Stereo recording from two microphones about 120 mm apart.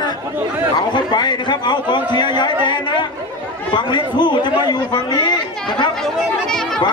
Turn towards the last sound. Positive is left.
turn(degrees=5)  # may be behind; listen again after turning